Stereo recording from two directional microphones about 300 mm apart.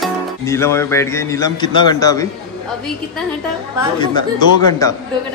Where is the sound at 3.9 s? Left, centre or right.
Centre.